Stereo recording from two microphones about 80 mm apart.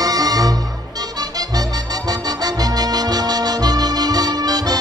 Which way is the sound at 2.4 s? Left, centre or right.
Right.